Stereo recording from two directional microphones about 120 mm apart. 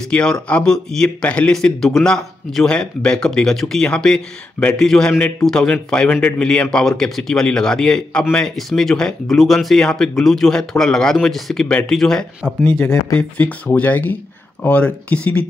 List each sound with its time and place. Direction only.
0.1 s speech: 10° left (ahead or behind)